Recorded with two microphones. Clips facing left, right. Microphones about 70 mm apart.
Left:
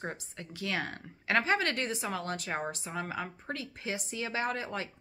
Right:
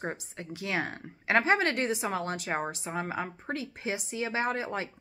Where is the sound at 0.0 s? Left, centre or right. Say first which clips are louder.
Right 3 dB; right.